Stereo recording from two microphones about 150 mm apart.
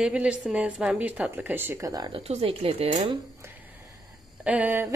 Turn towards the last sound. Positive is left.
turn(degrees=-15)  # may be behind; listen again after turning